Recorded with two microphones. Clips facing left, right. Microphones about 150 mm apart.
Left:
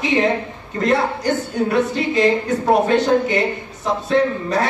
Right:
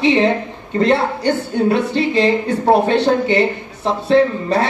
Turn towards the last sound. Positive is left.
turn(degrees=-30)  # may be behind; listen again after turning